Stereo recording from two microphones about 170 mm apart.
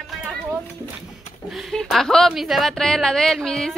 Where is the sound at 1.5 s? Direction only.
Centre (ahead or behind).